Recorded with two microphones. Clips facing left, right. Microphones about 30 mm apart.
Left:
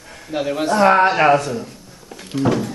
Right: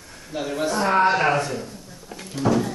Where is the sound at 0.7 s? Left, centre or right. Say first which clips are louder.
Left 5 dB; left.